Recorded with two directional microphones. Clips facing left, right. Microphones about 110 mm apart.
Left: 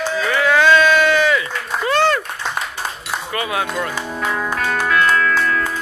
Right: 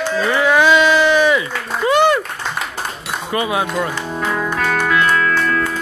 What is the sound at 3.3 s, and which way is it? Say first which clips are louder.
Speech: right 4 dB; 20° right (ahead or behind).